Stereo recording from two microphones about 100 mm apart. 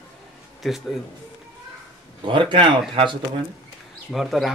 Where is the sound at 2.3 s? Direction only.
55° right (ahead or behind).